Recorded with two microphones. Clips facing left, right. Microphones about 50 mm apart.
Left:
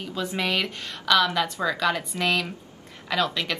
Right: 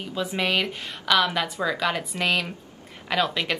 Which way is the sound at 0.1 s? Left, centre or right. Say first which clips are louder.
Right 2 dB; centre.